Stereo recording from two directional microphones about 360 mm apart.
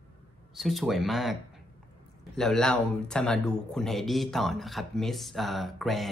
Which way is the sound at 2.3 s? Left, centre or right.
Centre.